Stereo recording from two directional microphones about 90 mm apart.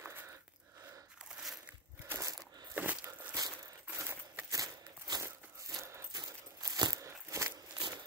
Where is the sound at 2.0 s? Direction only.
35° right (ahead or behind).